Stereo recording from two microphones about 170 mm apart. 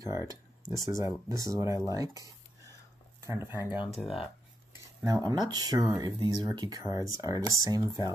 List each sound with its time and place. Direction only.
0.1 s speech: 15° right (ahead or behind)
2.0 s a sound: 20° right (ahead or behind)
3.3 s speech: 15° right (ahead or behind)
3.9 s speech: centre (ahead or behind)
5.0 s speech: 25° right (ahead or behind)